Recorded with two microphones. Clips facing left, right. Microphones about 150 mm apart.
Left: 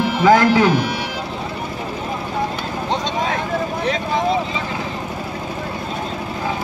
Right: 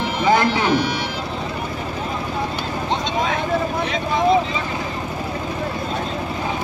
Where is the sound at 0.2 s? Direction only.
90° left.